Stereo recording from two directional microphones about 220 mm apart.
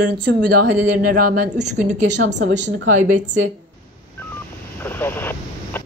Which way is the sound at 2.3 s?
35° right (ahead or behind).